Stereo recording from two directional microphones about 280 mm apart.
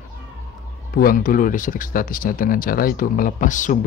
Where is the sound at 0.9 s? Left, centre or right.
Left.